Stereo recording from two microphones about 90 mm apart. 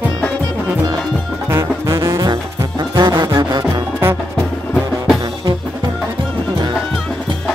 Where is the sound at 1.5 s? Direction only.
35° right (ahead or behind).